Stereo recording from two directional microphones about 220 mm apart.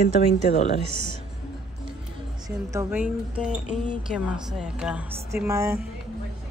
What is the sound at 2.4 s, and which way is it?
A woman's voice, 10° right (ahead or behind).